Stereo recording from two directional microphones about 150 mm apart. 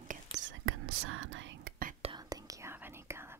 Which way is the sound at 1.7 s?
90° right.